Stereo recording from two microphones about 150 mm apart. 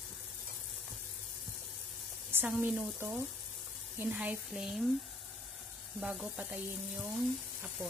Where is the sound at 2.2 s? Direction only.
15° right (ahead or behind).